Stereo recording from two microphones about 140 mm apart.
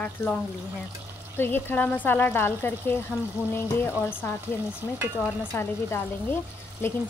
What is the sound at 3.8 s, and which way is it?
Frying, 20° left (ahead or behind).